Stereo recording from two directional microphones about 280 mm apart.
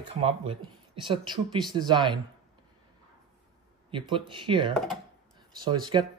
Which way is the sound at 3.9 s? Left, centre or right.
Centre.